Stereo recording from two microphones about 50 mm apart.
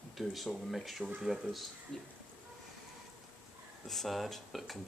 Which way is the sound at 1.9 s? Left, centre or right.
Centre.